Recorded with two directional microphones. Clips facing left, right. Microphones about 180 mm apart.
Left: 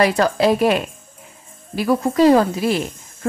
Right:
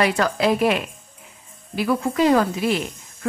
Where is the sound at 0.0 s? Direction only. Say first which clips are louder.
Left 4 dB; 35° left (ahead or behind).